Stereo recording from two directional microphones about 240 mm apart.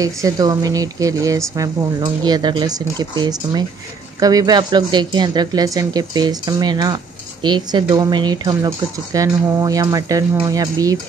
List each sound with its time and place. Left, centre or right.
0.0 s speech: centre